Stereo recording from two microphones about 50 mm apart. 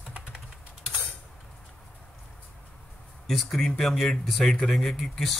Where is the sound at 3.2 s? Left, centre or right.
Centre.